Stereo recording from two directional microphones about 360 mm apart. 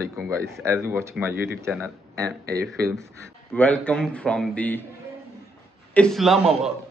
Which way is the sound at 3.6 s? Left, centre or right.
Centre.